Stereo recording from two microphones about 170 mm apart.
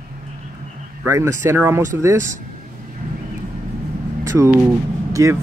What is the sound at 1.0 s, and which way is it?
Speech, 15° right (ahead or behind).